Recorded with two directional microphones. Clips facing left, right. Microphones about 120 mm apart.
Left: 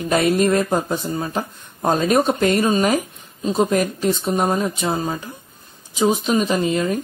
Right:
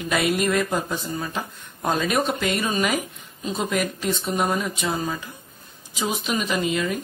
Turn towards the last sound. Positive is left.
turn(degrees=35)  # may be behind; listen again after turning